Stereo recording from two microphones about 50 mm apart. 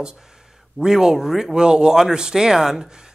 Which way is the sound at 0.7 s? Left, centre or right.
Centre.